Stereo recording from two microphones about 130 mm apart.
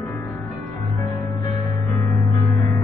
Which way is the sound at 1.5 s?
30° left (ahead or behind).